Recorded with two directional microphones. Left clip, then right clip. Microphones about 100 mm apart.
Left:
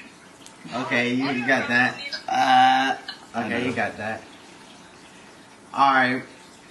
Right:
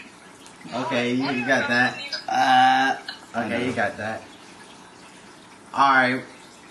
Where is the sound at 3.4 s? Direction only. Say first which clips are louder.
Right 1 dB; centre (ahead or behind).